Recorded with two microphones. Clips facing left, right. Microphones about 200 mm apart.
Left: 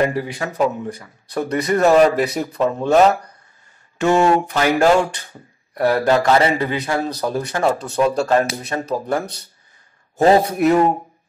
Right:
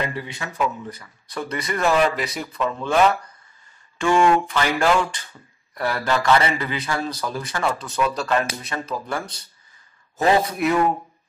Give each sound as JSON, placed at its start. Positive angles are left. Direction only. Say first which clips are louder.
{"t": 0.0, "sound": "speech", "louder": "left 8 dB", "side_deg": 45}